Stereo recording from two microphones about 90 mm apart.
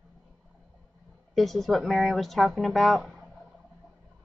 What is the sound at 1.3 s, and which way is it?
A woman's voice, centre (ahead or behind).